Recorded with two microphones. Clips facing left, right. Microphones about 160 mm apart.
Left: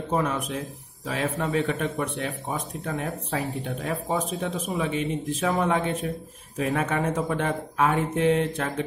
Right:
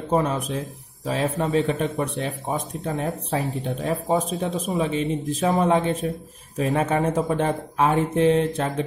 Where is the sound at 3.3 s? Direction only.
30° right (ahead or behind).